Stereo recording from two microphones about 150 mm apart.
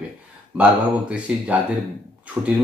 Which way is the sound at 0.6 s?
10° right (ahead or behind).